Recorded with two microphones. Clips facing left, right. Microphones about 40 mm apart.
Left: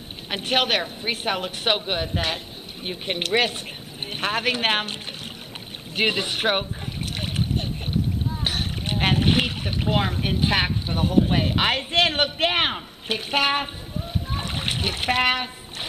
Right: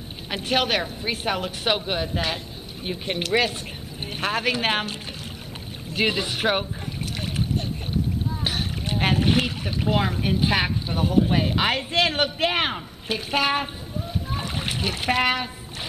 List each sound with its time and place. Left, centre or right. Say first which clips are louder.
0.3 s a woman's voice: left 1 dB; centre
5.9 s a woman's voice: left 1 dB; centre
7.2 s boat: even; centre
8.8 s a woman's voice: left 1 dB; centre
12.4 s a woman's voice: left 1 dB; centre
14.3 s splash: left 1 dB; centre